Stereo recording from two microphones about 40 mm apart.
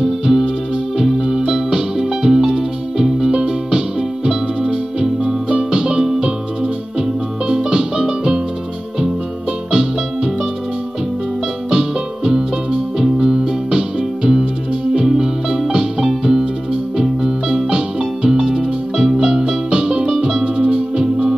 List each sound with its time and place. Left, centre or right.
0.0 s music: centre; by 5.6 s right
5.6 s music: centre
9.7 s music: centre
12.3 s music: centre